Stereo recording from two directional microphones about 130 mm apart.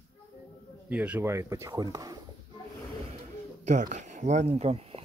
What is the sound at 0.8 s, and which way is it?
Speech, 10° right (ahead or behind).